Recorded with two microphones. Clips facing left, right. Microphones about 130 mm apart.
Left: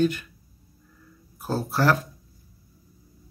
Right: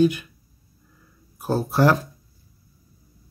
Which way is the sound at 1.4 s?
15° right (ahead or behind).